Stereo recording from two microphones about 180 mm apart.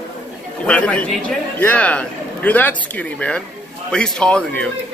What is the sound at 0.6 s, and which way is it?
A man's voice, 5° left (ahead or behind).